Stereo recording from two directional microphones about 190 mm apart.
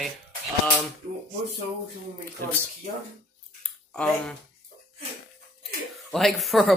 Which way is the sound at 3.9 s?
5° left (ahead or behind).